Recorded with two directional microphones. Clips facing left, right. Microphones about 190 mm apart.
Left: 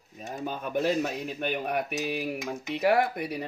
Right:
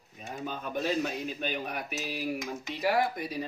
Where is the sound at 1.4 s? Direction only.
60° left (ahead or behind).